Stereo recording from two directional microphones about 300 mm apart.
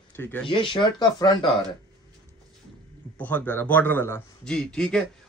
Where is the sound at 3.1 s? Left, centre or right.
Centre.